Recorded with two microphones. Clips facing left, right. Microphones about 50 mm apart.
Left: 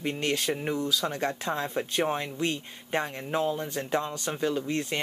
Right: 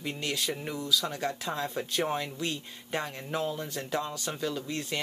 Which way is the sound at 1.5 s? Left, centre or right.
Left.